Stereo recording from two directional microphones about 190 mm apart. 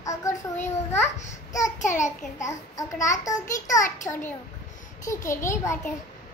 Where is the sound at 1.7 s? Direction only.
40° left (ahead or behind).